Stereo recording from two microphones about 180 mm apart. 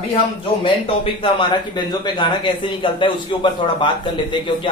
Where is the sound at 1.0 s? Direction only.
30° left (ahead or behind).